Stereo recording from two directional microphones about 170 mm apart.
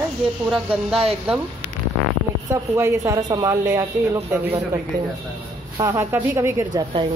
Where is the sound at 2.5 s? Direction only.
15° right (ahead or behind).